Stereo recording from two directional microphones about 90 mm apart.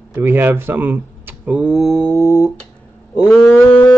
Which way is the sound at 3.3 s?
Centre (ahead or behind).